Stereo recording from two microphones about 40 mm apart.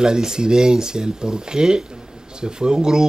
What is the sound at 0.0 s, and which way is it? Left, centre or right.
Speech, centre.